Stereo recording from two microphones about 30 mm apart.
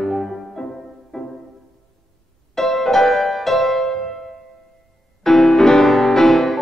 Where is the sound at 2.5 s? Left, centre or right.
Centre.